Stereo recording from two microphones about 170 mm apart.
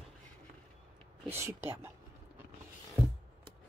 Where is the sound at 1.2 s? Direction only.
15° right (ahead or behind).